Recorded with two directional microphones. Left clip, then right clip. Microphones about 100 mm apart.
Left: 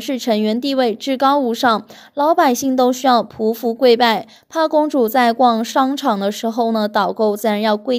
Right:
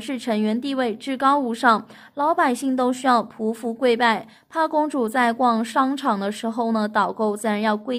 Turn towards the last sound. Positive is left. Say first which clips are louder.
# left 6 dB
turn(degrees=40)  # may be behind; listen again after turning